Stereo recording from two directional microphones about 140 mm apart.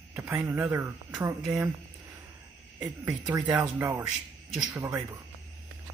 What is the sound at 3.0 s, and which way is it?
Speech, 20° right (ahead or behind).